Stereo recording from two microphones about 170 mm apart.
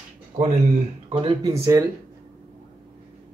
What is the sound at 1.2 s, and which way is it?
Speech, 30° right (ahead or behind).